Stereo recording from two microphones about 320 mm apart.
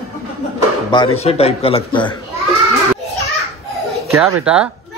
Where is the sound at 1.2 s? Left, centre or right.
Centre.